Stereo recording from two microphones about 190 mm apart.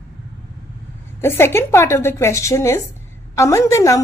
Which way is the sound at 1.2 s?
10° left (ahead or behind).